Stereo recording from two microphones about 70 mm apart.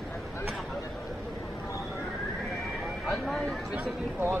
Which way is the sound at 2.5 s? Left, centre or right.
Centre.